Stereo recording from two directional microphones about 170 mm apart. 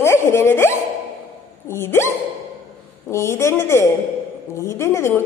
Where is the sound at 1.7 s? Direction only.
15° left (ahead or behind).